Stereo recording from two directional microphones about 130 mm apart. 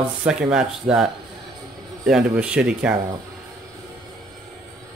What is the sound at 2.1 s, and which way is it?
Speech, 5° right (ahead or behind).